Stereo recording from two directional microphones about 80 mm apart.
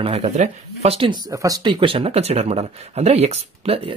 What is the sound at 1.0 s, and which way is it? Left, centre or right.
Speech, right.